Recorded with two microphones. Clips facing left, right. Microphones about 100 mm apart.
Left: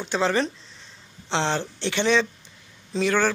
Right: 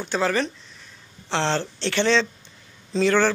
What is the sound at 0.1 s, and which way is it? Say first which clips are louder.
A man's voice: even; 25° left (ahead or behind).